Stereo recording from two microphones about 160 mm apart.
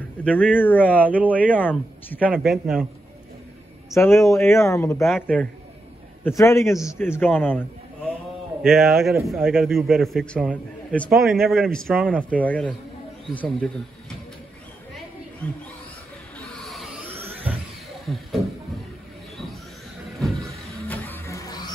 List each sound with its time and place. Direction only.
0.6 s a man's voice: 10° left (ahead or behind)
2.2 s a man's voice: 5° right (ahead or behind)
3.9 s a man's voice: 15° left (ahead or behind)
8.6 s a man's voice: centre (ahead or behind)
16.3 s a sound: centre (ahead or behind)
17.2 s a sound: 10° right (ahead or behind)
18.0 s speech: centre (ahead or behind)
20.2 s vehicle: centre (ahead or behind)
20.9 s music: 15° left (ahead or behind)